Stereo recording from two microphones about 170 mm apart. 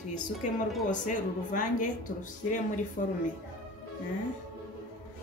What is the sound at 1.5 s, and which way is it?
A woman's voice, 50° left (ahead or behind).